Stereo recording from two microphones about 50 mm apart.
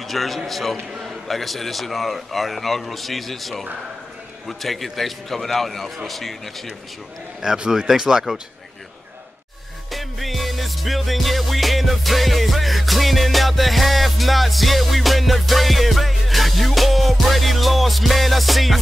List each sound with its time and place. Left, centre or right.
0.0 s a man's voice: centre
0.5 s music: centre
7.4 s speech: centre
9.8 s music: centre